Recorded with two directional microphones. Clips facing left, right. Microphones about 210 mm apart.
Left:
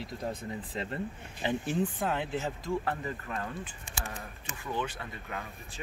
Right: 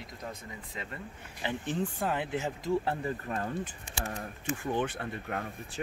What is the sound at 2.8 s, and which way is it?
Speech, 30° right (ahead or behind).